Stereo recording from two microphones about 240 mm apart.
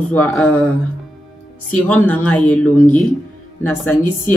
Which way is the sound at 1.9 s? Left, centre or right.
Centre.